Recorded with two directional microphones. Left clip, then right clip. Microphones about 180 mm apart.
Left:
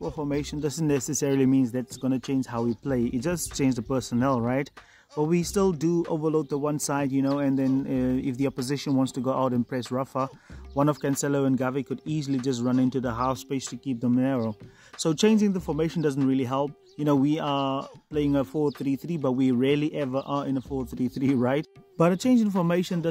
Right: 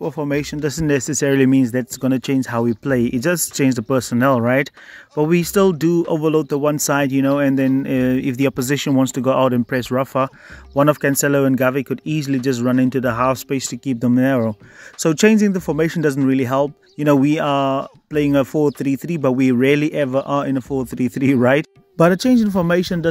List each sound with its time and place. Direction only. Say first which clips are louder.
0.0 s speech: right 8 dB; 35° right (ahead or behind)